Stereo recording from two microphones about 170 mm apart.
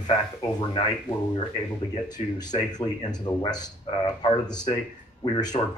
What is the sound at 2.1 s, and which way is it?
Speech, 25° left (ahead or behind).